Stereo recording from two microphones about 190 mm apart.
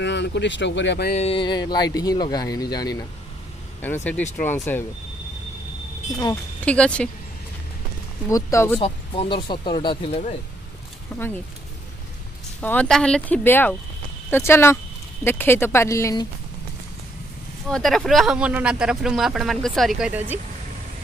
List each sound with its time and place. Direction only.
0.0 s speech: 65° left (ahead or behind)
1.1 s speech: 30° left (ahead or behind)
4.2 s speech: 10° left (ahead or behind)
6.6 s speech: 5° left (ahead or behind)
8.3 s speech: 15° left (ahead or behind)
8.8 s speech: 30° left (ahead or behind)
11.1 s speech: 10° left (ahead or behind)
12.5 s speech: 5° left (ahead or behind)
17.6 s speech: 5° left (ahead or behind)